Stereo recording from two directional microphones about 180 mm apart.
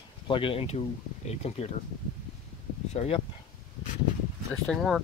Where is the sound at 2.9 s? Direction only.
35° left (ahead or behind).